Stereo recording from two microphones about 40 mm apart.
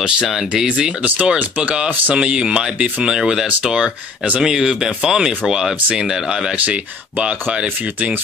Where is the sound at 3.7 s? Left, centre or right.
Right.